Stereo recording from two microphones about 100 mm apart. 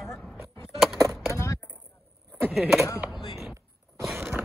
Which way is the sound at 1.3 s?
30° left (ahead or behind).